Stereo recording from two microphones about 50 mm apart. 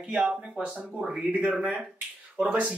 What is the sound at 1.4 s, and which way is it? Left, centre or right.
Speech, right.